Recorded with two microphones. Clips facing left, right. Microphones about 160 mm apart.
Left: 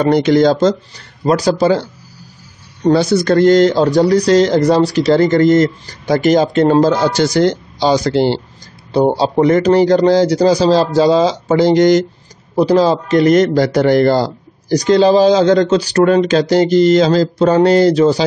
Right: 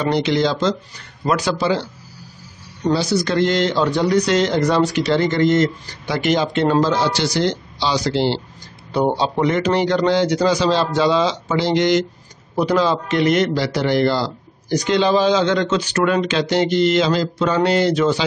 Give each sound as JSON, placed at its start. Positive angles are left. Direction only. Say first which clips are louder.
{"t": 0.0, "sound": "a man's voice", "louder": "left 7 dB", "side_deg": 45}
{"t": 2.9, "sound": "speech", "louder": "left 7 dB", "side_deg": 55}
{"t": 8.9, "sound": "a man's voice", "louder": "left 6 dB", "side_deg": 35}